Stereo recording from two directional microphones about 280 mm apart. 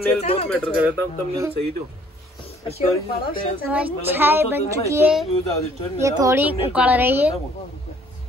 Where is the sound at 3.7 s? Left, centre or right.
Centre.